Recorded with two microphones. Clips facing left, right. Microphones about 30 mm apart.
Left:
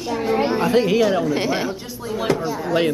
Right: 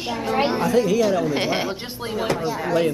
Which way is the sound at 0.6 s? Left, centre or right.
Left.